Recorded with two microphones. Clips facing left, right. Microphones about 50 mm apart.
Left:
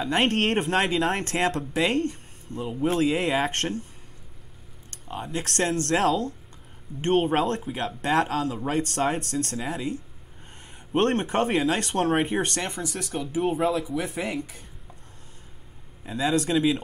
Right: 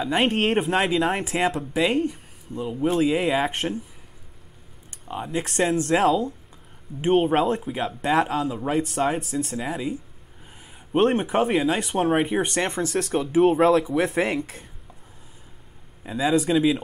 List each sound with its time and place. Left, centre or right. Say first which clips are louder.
0.0 s speech: right 1 dB; centre
5.0 s speech: right 3 dB; centre
12.6 s speech: right 7 dB; right
13.9 s speech: right 6 dB; right
16.0 s speech: right 3 dB; centre